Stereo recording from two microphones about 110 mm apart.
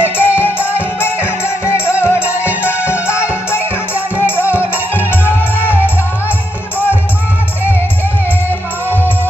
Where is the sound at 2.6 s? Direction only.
20° left (ahead or behind).